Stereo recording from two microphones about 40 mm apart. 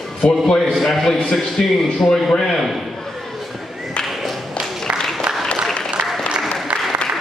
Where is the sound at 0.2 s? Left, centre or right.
Left.